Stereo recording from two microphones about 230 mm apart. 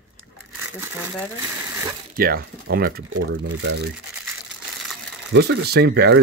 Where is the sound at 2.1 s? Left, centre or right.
Right.